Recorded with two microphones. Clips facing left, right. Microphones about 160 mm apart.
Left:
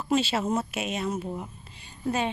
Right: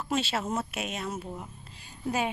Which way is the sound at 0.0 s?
Centre (ahead or behind).